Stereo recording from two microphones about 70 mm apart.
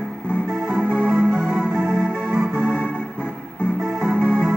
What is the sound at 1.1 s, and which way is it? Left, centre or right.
Music, centre.